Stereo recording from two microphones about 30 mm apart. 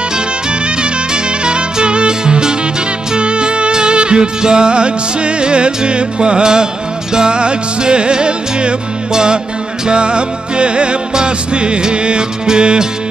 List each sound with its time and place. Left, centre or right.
1.1 s music: right